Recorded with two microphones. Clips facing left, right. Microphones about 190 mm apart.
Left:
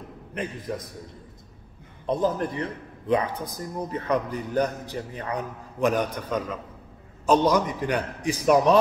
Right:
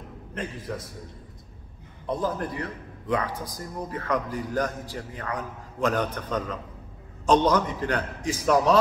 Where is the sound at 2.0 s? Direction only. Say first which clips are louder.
Left 3 dB; 20° left (ahead or behind).